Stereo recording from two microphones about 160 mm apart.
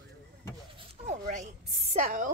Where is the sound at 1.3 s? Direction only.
45° right (ahead or behind).